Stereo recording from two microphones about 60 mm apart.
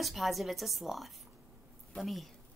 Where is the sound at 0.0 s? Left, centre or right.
Centre.